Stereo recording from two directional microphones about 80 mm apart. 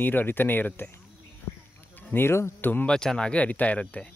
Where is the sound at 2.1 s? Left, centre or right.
Left.